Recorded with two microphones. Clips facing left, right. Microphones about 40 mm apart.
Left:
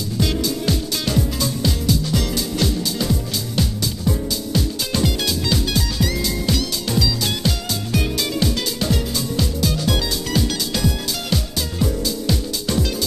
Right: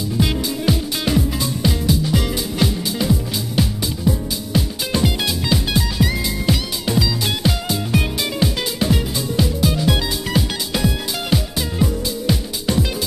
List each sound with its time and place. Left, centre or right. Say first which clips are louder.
0.2 s music: even; centre